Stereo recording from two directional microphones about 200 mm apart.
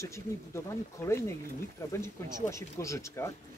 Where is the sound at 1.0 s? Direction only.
10° left (ahead or behind).